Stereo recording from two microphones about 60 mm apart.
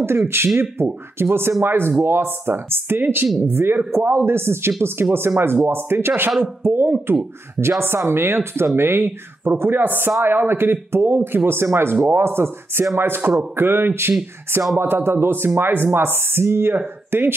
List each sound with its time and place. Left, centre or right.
0.0 s speech: right